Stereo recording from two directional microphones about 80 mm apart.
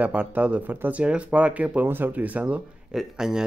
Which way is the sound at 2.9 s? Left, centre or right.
Centre.